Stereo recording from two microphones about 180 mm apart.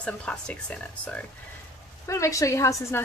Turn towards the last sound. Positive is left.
turn(degrees=15)  # may be behind; listen again after turning